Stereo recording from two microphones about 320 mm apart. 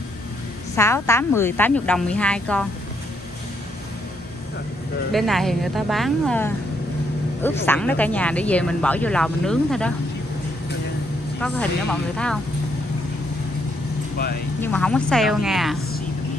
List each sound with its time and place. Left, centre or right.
0.7 s speech: centre
5.1 s speech: centre
7.6 s speech: centre
11.4 s speech: centre
14.1 s speech: left
14.6 s speech: centre